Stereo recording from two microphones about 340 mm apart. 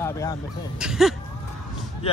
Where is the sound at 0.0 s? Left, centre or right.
Centre.